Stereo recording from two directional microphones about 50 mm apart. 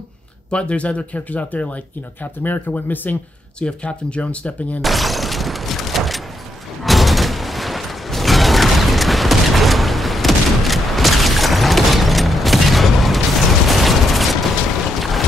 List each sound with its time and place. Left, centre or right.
0.5 s speech: left
3.5 s speech: left
4.8 s a sound: centre
6.8 s music: centre
13.7 s a sound: centre
15.0 s mechanisms: centre